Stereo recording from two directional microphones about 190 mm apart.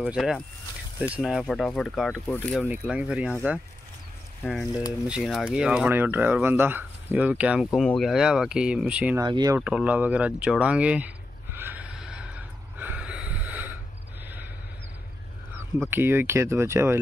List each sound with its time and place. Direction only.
0.0 s speech: centre (ahead or behind)
2.7 s speech: 5° right (ahead or behind)
5.0 s speech: centre (ahead or behind)
9.2 s speech: 20° right (ahead or behind)
9.6 s speech: 5° right (ahead or behind)
11.5 s horse: 10° right (ahead or behind)
12.4 s snort: 10° right (ahead or behind)
15.9 s speech: 10° right (ahead or behind)